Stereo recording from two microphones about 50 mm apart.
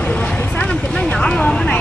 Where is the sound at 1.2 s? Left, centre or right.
Centre.